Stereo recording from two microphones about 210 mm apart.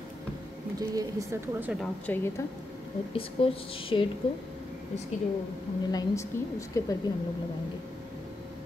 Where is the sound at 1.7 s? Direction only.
Centre (ahead or behind).